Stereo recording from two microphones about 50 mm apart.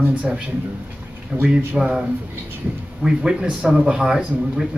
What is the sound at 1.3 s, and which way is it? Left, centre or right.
Speech, right.